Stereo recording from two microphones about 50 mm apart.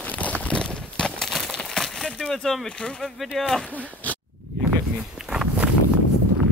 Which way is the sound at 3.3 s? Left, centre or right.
Centre.